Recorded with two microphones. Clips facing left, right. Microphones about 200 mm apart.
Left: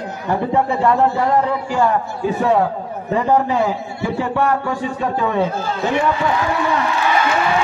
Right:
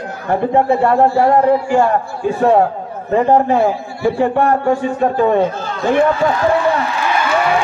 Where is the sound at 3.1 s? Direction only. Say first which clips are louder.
Right 4 dB; 50° right (ahead or behind).